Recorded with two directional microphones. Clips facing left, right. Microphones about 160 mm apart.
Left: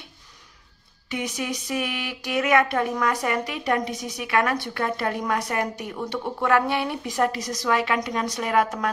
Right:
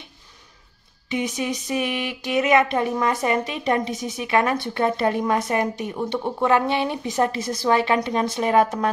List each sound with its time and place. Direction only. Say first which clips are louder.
1.1 s speech: right 4 dB; 20° right (ahead or behind)